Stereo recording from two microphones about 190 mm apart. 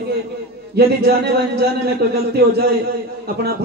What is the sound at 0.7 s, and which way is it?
Speech, 60° right (ahead or behind).